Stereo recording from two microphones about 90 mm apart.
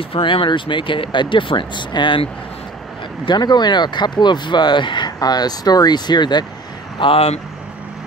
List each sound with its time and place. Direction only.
0.1 s speech: 75° left (ahead or behind)
3.3 s speech: 55° left (ahead or behind)
7.0 s speech: 90° left